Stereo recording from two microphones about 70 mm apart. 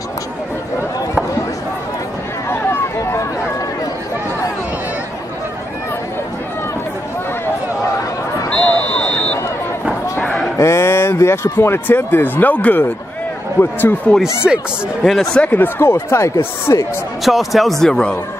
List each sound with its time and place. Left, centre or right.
2.5 s a sound: left
8.5 s a sound: centre
10.1 s slam: left
10.6 s a sound: left
11.5 s speech: left
14.4 s speech: centre
15.0 s speech: centre
15.4 s speech: left
17.2 s speech: centre